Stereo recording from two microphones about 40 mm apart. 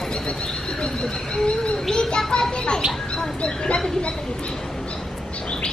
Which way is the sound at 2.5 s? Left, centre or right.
Left.